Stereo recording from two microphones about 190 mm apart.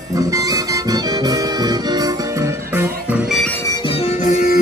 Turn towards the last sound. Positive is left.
turn(degrees=35)  # may be behind; listen again after turning